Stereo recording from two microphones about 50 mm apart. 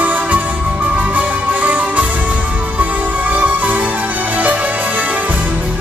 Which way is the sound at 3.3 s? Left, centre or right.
Right.